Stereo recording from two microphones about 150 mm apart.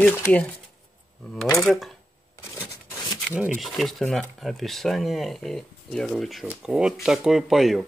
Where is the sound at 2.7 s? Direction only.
25° left (ahead or behind).